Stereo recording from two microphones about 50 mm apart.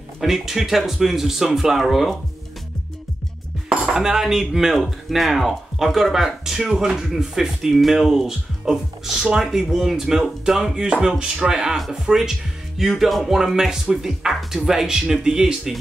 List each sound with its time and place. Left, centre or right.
0.2 s speech: centre
3.6 s dishes: right
3.9 s speech: centre